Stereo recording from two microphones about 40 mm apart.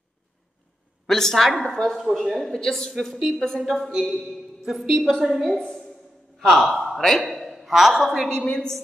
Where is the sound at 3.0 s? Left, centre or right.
Centre.